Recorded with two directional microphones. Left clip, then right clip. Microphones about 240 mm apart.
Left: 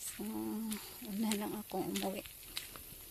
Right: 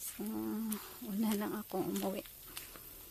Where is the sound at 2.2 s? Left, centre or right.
Centre.